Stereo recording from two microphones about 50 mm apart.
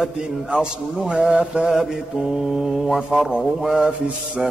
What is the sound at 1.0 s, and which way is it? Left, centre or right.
Mantra, right.